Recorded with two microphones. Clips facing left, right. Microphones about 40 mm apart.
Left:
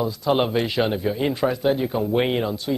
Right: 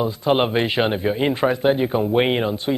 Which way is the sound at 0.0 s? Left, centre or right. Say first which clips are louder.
Right 2 dB; right.